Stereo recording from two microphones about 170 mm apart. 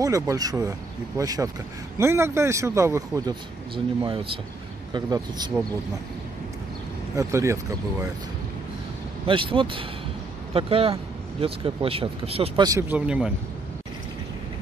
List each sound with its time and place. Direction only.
0.0 s speech: 20° right (ahead or behind)
3.7 s speech: 30° right (ahead or behind)
7.2 s speech: 15° right (ahead or behind)
9.3 s speech: 30° right (ahead or behind)
12.6 s speech: 15° right (ahead or behind)